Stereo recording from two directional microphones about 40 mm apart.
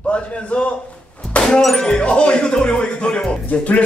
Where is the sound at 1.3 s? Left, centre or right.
Left.